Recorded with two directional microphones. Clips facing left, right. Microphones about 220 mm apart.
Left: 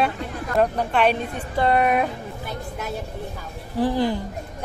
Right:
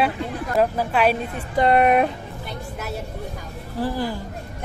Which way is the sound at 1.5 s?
20° right (ahead or behind).